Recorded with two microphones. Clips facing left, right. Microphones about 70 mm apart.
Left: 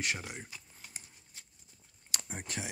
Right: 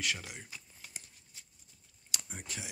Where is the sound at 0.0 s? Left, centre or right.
Left.